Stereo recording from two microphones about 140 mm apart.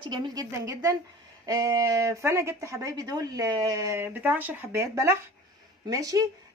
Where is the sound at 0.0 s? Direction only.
30° right (ahead or behind).